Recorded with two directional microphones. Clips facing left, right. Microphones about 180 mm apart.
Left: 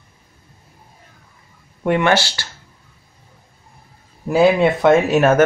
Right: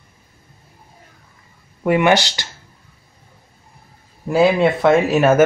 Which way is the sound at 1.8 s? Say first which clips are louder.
Right 2 dB; 5° right (ahead or behind).